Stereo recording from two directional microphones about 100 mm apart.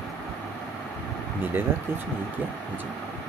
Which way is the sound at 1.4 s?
20° right (ahead or behind).